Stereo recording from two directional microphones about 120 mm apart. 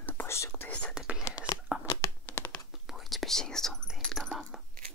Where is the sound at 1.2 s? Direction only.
35° left (ahead or behind).